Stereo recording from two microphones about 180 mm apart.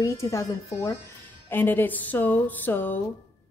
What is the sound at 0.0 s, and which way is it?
A woman's voice, 15° left (ahead or behind).